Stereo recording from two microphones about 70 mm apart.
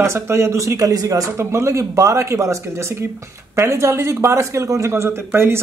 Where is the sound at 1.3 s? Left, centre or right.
Right.